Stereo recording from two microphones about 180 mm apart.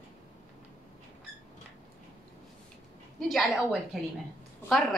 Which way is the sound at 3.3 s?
Centre (ahead or behind).